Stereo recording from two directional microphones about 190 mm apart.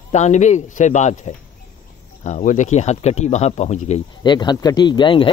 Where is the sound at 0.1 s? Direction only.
40° left (ahead or behind).